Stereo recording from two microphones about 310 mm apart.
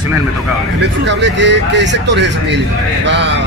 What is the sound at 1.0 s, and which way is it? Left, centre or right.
Speech, right.